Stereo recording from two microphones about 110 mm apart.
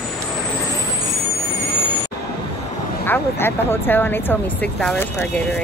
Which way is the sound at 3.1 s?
20° left (ahead or behind).